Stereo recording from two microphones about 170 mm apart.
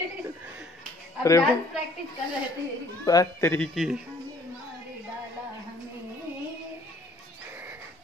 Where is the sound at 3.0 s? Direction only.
15° left (ahead or behind); by 4.0 s centre (ahead or behind).